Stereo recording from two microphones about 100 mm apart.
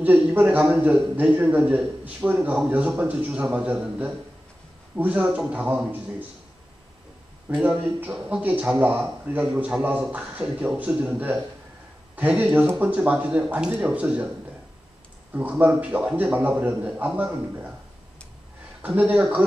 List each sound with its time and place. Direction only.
0.0 s speech: 15° right (ahead or behind)
7.4 s speech: 15° right (ahead or behind)
15.3 s speech: 15° right (ahead or behind)
18.8 s speech: 15° right (ahead or behind)